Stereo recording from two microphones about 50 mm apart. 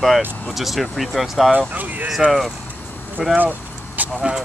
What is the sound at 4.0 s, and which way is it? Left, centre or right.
Speech, right.